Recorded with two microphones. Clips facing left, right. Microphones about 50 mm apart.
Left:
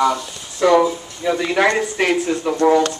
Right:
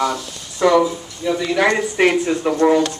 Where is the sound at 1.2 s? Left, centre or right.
Left.